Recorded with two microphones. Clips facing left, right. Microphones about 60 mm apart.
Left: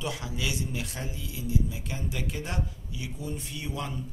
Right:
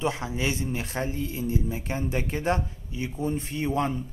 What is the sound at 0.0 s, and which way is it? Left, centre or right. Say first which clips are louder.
Speech: right 6 dB; right.